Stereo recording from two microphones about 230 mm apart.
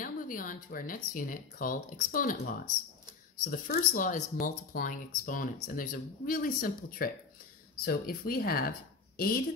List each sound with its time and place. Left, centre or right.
0.0 s speech: left